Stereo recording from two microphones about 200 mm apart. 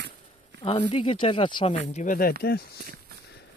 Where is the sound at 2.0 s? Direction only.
45° left (ahead or behind).